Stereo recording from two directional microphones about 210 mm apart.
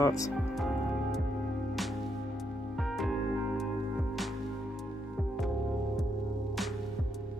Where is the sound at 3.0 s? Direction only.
Centre (ahead or behind).